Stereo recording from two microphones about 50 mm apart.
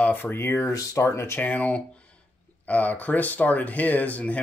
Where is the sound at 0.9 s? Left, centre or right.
Left.